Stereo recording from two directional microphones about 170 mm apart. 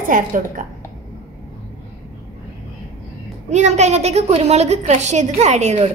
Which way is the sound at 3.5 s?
40° right (ahead or behind).